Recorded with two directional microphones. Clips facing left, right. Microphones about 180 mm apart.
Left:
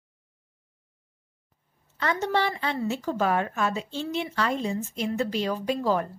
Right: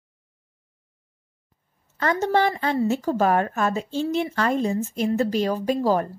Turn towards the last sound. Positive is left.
turn(degrees=-40)  # may be behind; listen again after turning